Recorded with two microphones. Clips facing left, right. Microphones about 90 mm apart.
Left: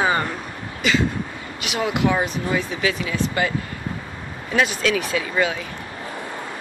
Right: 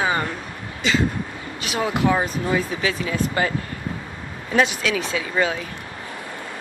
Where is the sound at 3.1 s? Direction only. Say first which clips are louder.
Even; 40° right (ahead or behind).